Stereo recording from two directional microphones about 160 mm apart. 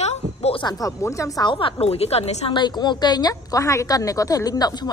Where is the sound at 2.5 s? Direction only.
25° left (ahead or behind).